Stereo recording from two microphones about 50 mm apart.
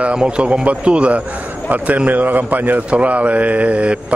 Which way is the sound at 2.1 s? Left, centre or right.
Right.